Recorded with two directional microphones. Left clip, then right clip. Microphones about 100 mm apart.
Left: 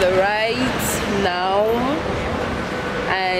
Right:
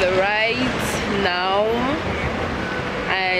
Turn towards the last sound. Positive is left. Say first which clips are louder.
# even
turn(degrees=15)  # may be behind; listen again after turning